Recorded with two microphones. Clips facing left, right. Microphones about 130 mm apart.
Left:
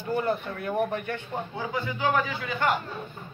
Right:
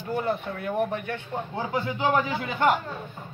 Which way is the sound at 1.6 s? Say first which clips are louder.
Right 4 dB; 25° right (ahead or behind).